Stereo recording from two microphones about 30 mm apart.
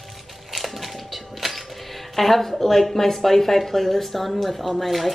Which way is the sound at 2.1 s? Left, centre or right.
Centre.